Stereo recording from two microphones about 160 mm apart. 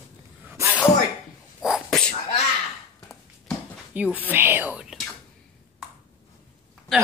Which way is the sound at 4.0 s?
10° right (ahead or behind).